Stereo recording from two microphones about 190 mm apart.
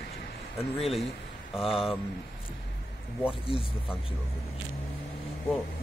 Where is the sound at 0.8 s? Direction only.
Centre (ahead or behind).